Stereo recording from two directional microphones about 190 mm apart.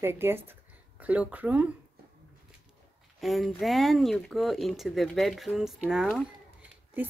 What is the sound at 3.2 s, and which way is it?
A woman's voice, centre (ahead or behind).